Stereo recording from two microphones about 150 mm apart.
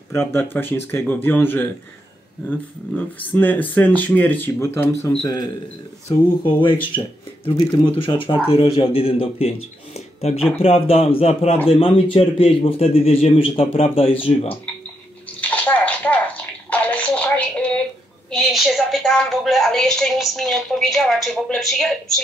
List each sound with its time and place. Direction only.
0.3 s a man's voice: 15° left (ahead or behind); by 14.6 s 35° left (ahead or behind)
15.4 s a sound: 10° left (ahead or behind)
18.3 s a woman's voice: centre (ahead or behind)